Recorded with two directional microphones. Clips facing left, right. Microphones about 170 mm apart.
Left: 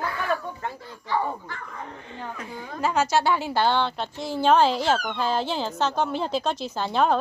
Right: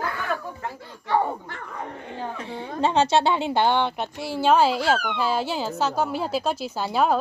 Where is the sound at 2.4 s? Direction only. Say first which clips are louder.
Right 3 dB; 30° right (ahead or behind).